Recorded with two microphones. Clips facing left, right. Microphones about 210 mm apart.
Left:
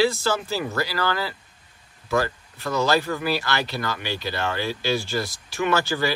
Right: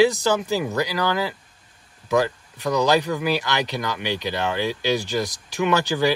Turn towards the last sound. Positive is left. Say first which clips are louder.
# right 3 dB
turn(degrees=-15)  # may be behind; listen again after turning